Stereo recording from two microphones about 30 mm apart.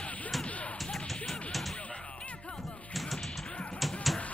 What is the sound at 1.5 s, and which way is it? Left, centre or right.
Music, centre.